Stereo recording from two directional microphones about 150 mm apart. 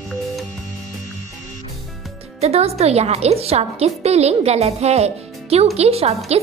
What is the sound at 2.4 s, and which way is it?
A child's voice, 45° right (ahead or behind).